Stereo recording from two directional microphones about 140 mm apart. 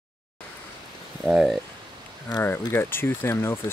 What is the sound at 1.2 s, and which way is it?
Speech, centre (ahead or behind).